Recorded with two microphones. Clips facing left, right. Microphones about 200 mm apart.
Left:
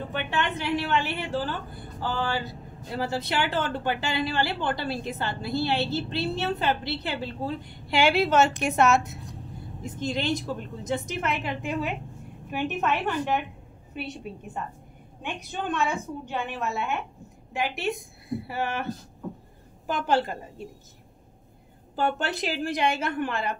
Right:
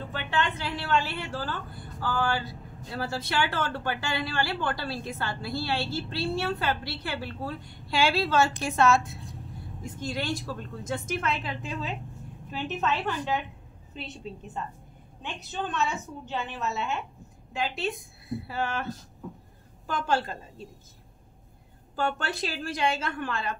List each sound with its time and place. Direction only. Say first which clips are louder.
0.1 s a woman's voice: even; 20° left (ahead or behind)
19.9 s a woman's voice: left 3 dB; 15° left (ahead or behind)
21.9 s a woman's voice: left 3 dB; 20° left (ahead or behind)